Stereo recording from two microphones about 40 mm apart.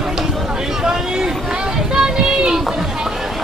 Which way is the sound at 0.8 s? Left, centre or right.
Centre.